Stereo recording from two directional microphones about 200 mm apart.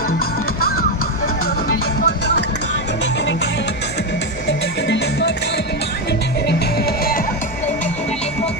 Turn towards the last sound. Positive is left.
turn(degrees=50)  # may be behind; listen again after turning